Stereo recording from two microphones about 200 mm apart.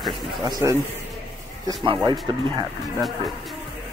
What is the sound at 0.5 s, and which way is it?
Speech, 15° right (ahead or behind).